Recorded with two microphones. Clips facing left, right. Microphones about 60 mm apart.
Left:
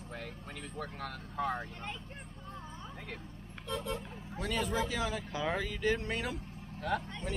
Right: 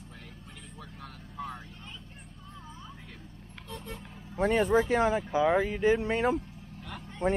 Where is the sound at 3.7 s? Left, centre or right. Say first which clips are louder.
Left 6 dB; left.